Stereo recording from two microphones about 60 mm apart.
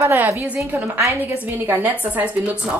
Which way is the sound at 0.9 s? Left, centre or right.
Right.